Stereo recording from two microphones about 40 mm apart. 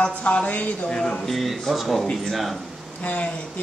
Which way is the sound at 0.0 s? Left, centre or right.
Left.